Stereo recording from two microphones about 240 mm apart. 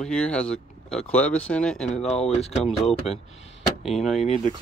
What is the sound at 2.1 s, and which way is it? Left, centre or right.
Speech, left.